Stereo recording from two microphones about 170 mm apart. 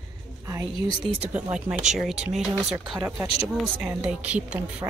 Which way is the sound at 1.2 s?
5° right (ahead or behind).